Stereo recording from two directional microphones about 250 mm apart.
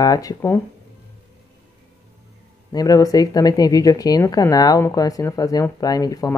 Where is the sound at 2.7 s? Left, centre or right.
Centre.